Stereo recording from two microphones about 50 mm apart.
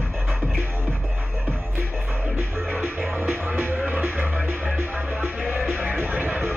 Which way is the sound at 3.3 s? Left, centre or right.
Right.